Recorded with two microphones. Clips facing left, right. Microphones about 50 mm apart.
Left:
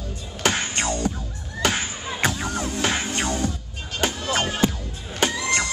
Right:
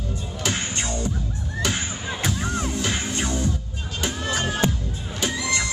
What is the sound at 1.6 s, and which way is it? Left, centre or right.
Crowd, left.